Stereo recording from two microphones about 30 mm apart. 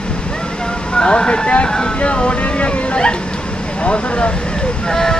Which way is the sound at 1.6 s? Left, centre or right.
Left.